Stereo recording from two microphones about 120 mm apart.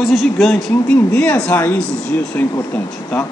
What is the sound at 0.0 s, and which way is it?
A man's voice, centre (ahead or behind).